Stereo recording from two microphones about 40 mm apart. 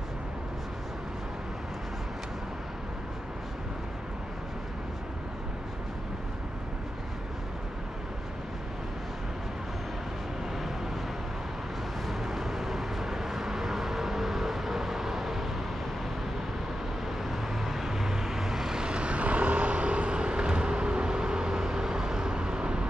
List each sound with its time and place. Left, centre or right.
12.1 s vehicle: centre
17.3 s vehicle: centre; by 22.8 s right